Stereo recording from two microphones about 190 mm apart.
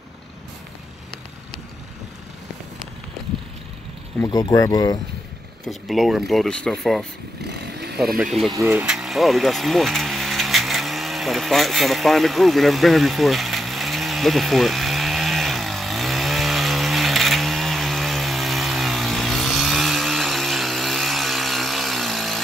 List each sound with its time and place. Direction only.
4.2 s speech: 20° left (ahead or behind)
5.7 s speech: centre (ahead or behind)
7.4 s vehicle: 60° right (ahead or behind)
8.0 s speech: centre (ahead or behind)
8.5 s a sound: 15° right (ahead or behind)